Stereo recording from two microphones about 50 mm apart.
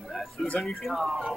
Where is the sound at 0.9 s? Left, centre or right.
Centre.